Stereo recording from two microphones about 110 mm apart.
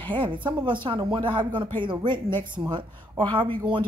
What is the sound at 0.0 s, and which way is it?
A woman's voice, 50° right (ahead or behind).